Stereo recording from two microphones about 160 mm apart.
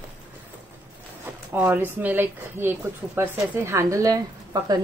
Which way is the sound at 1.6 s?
10° right (ahead or behind).